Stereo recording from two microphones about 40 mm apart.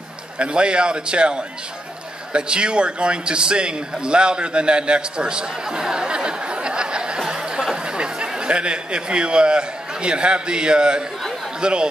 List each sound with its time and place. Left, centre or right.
0.4 s a man's voice: right
7.2 s a man's voice: centre